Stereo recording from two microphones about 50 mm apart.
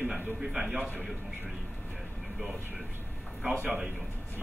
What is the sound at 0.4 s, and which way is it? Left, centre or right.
Speech, centre.